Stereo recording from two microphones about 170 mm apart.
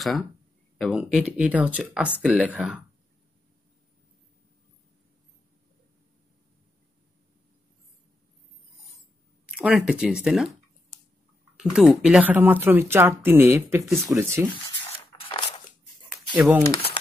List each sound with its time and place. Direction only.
0.7 s speech: centre (ahead or behind)
9.6 s speech: 5° right (ahead or behind)
11.5 s speech: 5° right (ahead or behind)
15.1 s a sound: 30° left (ahead or behind)
16.3 s speech: 5° right (ahead or behind)